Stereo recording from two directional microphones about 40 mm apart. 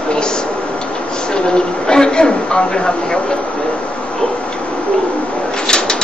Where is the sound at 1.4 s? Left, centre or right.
Centre.